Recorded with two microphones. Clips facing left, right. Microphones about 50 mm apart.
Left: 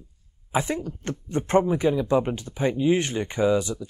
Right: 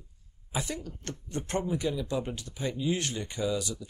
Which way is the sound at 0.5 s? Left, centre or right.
Left.